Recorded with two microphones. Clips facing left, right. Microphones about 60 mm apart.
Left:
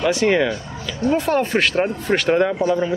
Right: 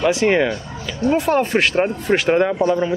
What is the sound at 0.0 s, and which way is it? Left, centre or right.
Speech, centre.